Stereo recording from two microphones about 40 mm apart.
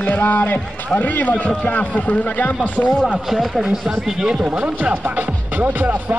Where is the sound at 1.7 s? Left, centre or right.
Left.